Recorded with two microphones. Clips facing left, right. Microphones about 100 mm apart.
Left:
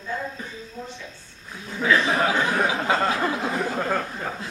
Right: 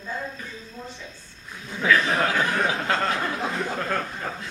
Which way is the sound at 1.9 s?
15° left (ahead or behind).